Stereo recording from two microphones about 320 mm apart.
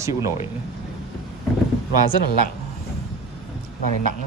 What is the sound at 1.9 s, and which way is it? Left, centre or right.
Speech, left.